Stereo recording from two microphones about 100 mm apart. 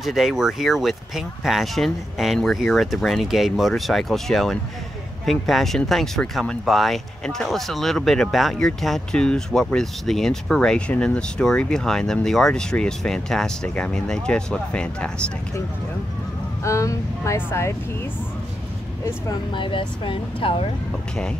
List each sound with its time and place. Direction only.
0.0 s speech: centre (ahead or behind)
16.6 s speech: 30° left (ahead or behind)
19.5 s speech: 55° left (ahead or behind)